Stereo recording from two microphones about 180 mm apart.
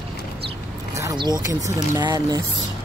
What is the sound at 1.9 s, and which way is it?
Speech, 20° right (ahead or behind).